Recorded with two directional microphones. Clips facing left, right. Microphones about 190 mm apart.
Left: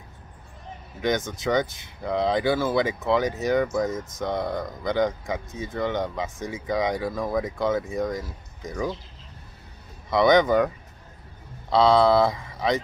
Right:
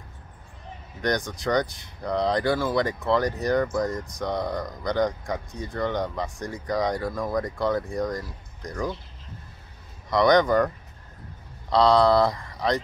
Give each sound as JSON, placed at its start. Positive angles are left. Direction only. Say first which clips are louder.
{"t": 1.0, "sound": "speech", "louder": "left 1 dB", "side_deg": 0}
{"t": 10.0, "sound": "speech", "louder": "left 1 dB", "side_deg": 0}
{"t": 11.7, "sound": "speech", "louder": "left 1 dB", "side_deg": 0}